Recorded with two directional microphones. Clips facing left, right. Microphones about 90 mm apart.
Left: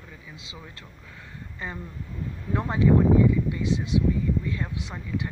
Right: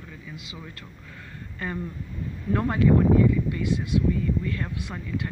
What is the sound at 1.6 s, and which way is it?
Speech, 20° left (ahead or behind).